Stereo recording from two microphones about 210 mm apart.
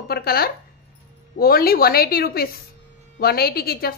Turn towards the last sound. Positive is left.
turn(degrees=45)  # may be behind; listen again after turning